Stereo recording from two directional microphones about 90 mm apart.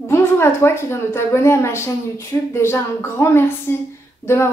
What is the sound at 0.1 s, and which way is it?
Speech, 30° left (ahead or behind).